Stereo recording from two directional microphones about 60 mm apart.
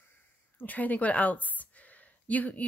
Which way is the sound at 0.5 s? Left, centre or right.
Left.